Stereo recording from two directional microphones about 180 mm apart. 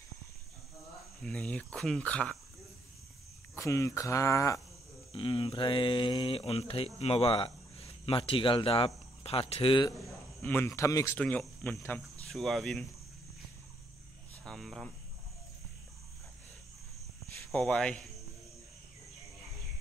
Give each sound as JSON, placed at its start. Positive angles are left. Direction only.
{"t": 1.2, "sound": "speech", "side_deg": 5}
{"t": 3.5, "sound": "speech", "side_deg": 15}
{"t": 5.1, "sound": "speech", "side_deg": 30}
{"t": 10.4, "sound": "speech", "side_deg": 10}
{"t": 14.4, "sound": "speech", "side_deg": 0}
{"t": 17.5, "sound": "speech", "side_deg": 0}